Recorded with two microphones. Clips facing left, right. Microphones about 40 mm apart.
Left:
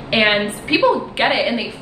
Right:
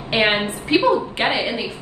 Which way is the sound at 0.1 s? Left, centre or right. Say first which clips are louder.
Left 3 dB; left.